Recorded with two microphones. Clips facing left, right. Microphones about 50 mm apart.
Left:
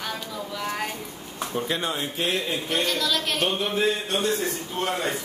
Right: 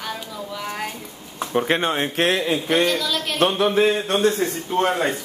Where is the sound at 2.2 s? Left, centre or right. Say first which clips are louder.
Right 6 dB; right.